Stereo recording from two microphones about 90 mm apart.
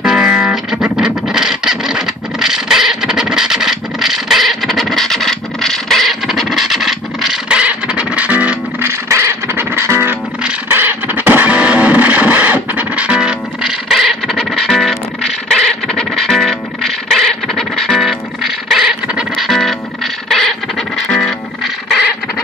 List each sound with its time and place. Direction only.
0.0 s music: 5° right (ahead or behind)
8.8 s music: 30° right (ahead or behind); by 19.7 s centre (ahead or behind)
20.2 s scratch: 5° left (ahead or behind)
21.1 s music: 10° left (ahead or behind)